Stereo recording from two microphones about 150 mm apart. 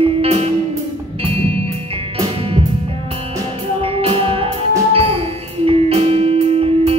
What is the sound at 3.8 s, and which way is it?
Music, 40° right (ahead or behind).